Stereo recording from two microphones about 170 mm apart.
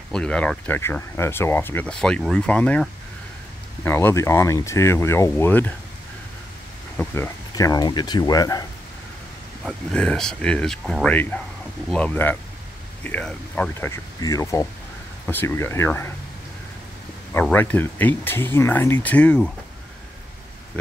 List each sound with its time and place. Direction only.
0.1 s speech: 5° left (ahead or behind)
7.2 s speech: 20° left (ahead or behind)
9.7 s speech: 5° left (ahead or behind)
17.3 s speech: 10° left (ahead or behind)